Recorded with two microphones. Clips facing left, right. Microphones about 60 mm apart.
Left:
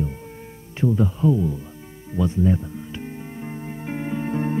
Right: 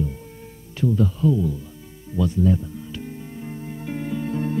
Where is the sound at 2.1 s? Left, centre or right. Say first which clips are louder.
Even; left.